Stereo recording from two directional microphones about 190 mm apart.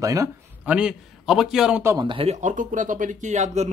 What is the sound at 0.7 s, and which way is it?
A man's voice, 5° right (ahead or behind).